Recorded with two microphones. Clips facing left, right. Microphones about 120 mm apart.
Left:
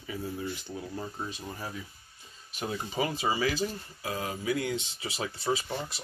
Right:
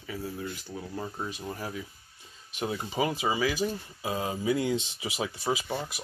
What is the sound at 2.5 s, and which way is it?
Speech, 15° right (ahead or behind).